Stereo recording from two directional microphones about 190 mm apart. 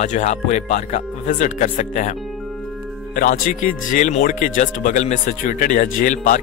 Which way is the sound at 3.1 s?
45° left (ahead or behind).